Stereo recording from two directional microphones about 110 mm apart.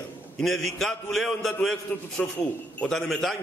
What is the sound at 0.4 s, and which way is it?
A man's voice, 5° left (ahead or behind).